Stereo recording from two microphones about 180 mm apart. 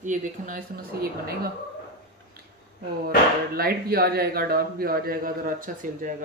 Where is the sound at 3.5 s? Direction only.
55° right (ahead or behind).